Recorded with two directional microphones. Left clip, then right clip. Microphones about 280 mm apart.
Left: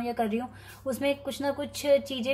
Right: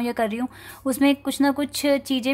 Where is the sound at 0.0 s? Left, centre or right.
Right.